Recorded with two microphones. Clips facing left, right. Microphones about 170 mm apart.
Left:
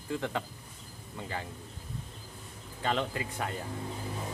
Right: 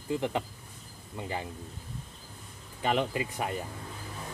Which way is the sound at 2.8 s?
15° right (ahead or behind).